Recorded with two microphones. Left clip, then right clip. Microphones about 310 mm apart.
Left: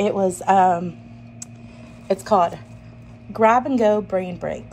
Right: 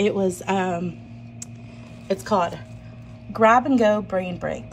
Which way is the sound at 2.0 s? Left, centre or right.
Centre.